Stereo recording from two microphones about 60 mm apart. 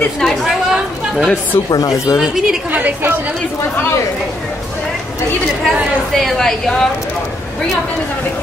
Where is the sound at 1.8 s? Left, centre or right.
Left.